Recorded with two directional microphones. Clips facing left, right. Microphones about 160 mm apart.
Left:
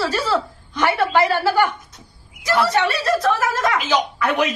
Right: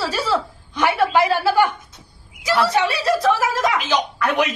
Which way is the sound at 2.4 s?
10° right (ahead or behind).